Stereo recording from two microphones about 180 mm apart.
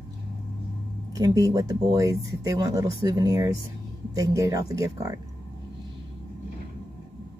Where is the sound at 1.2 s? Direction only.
20° right (ahead or behind).